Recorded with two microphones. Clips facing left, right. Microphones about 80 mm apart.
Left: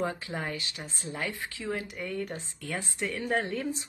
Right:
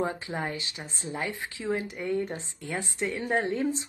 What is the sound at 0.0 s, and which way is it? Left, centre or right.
Speech, right.